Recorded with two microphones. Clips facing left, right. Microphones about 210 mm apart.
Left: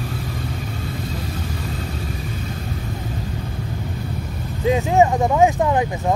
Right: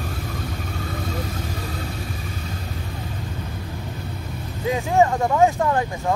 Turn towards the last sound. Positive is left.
turn(degrees=15)  # may be behind; listen again after turning